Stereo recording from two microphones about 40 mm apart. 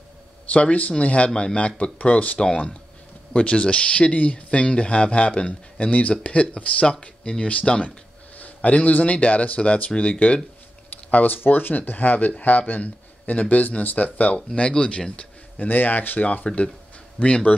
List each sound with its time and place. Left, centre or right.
0.5 s speech: left
2.3 s speech: left
8.4 s speech: left
11.1 s speech: left
11.3 s speech: left
15.5 s speech: left
16.4 s speech: left